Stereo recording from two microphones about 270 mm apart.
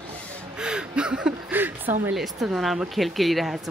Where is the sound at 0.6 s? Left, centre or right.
Centre.